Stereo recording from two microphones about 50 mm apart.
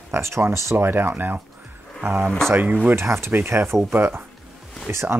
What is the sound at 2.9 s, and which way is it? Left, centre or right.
Speech, right.